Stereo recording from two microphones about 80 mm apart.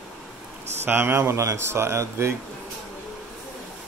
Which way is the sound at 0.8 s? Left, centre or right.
Right.